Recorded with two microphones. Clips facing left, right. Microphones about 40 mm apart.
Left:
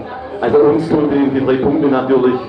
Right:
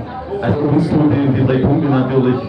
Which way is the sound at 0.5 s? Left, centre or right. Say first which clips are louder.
Left 6 dB; left.